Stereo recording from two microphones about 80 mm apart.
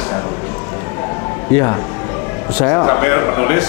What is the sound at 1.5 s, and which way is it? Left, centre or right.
Speech, left.